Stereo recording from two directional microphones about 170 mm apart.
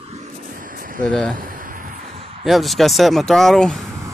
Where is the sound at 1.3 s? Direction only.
55° right (ahead or behind).